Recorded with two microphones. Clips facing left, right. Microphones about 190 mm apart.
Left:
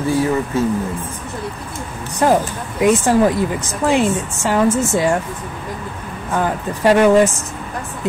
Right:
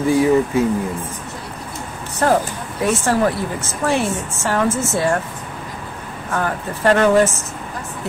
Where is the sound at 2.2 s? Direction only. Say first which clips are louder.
Left 2 dB; 15° left (ahead or behind).